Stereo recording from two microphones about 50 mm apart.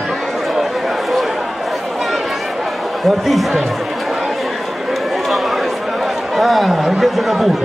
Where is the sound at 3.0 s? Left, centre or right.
Centre.